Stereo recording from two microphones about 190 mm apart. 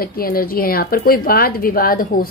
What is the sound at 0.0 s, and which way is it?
A woman's voice, 50° left (ahead or behind).